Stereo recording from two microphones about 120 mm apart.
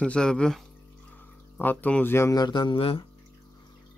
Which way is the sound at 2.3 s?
35° left (ahead or behind).